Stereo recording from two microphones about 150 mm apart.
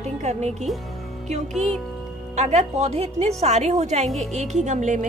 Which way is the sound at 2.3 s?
50° right (ahead or behind).